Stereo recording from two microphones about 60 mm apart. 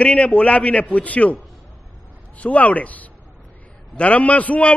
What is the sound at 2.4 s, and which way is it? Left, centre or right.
A man's voice, left.